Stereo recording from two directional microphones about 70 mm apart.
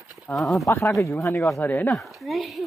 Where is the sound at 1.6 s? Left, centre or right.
Left.